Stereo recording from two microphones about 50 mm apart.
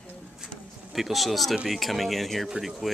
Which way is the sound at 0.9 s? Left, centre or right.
Centre.